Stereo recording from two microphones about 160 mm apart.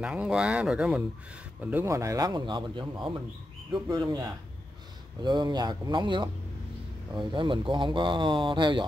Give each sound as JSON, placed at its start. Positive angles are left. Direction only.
{"t": 0.0, "sound": "speech", "side_deg": -5}